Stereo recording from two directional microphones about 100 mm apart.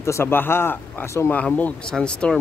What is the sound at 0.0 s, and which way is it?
Speech, 25° left (ahead or behind).